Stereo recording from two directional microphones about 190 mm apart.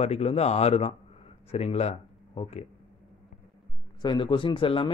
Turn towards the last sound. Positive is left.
turn(degrees=25)  # may be behind; listen again after turning